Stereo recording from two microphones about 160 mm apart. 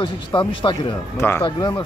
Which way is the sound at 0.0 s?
30° left (ahead or behind).